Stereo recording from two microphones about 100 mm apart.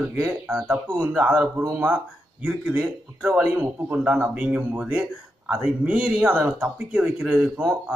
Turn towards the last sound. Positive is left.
turn(degrees=-10)  # may be behind; listen again after turning